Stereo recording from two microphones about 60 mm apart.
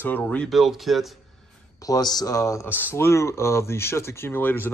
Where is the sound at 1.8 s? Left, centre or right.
Left.